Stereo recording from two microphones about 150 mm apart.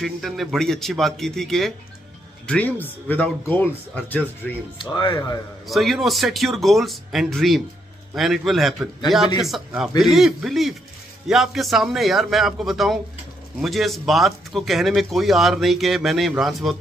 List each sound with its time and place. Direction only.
0.0 s speech: centre (ahead or behind)
4.9 s speech: 30° left (ahead or behind)
5.7 s speech: centre (ahead or behind)